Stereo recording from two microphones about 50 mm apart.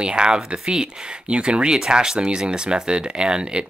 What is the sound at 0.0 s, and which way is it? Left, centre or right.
Speech, centre.